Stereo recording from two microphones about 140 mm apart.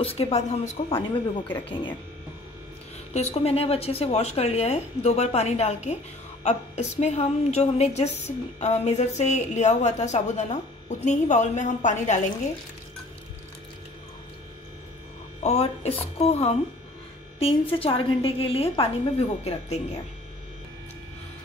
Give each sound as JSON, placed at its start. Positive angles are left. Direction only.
{"t": 0.0, "sound": "a woman's voice", "side_deg": 45}
{"t": 3.1, "sound": "a woman's voice", "side_deg": 50}
{"t": 15.4, "sound": "a woman's voice", "side_deg": 50}